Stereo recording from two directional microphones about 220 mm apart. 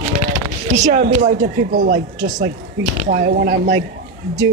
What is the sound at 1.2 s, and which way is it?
Speech, 40° right (ahead or behind).